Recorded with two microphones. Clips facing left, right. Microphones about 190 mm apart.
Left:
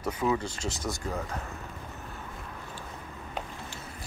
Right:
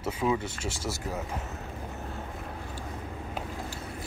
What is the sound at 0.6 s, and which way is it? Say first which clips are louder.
Speech: even; 25° right (ahead or behind).